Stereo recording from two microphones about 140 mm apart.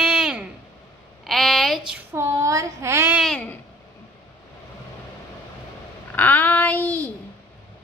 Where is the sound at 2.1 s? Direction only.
20° right (ahead or behind).